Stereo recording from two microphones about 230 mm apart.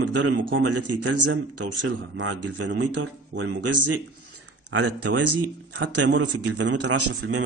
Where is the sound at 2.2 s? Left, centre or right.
Right.